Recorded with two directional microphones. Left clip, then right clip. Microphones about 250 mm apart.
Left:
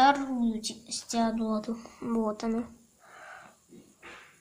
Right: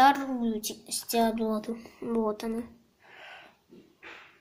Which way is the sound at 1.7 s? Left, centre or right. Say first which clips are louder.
Right 1 dB; centre.